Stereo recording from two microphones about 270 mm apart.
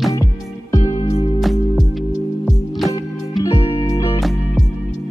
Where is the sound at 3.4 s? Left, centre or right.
Centre.